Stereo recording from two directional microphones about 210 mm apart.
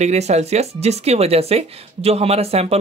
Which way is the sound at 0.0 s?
30° right (ahead or behind).